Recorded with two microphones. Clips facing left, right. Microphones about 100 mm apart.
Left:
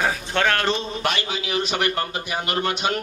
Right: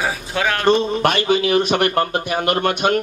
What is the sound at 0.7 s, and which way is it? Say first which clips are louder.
A man's voice: right 8 dB; 50° right (ahead or behind).